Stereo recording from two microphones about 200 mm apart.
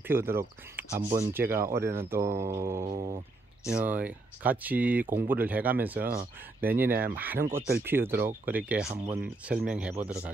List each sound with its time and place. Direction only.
0.1 s speech: 10° right (ahead or behind)
2.9 s a sound: 30° right (ahead or behind)
3.6 s speech: 5° right (ahead or behind)